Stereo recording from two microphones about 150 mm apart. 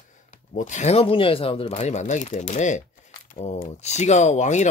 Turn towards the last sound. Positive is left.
turn(degrees=50)  # may be behind; listen again after turning